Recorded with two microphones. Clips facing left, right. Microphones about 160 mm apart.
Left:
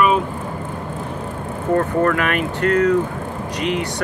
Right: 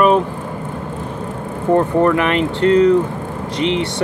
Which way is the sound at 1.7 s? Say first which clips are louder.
Right 4 dB; 20° right (ahead or behind).